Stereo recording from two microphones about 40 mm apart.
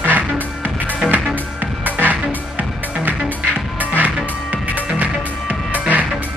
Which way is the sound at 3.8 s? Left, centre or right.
Right.